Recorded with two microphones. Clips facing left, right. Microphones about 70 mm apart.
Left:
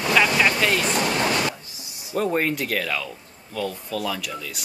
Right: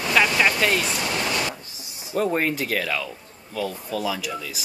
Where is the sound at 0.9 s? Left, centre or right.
Left.